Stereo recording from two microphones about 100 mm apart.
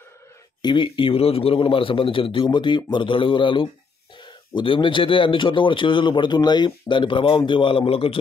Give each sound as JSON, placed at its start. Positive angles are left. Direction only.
{"t": 0.6, "sound": "a man's voice", "side_deg": 50}